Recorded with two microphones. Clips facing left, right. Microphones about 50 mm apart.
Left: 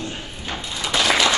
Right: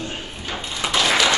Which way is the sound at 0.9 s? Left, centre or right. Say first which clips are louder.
Even; centre.